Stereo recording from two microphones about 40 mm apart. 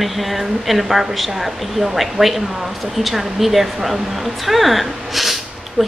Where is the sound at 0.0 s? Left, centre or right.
Centre.